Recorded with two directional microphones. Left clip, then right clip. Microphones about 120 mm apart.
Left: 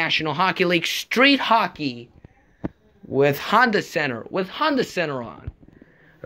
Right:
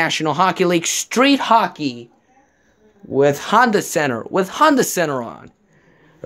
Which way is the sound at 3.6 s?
40° right (ahead or behind).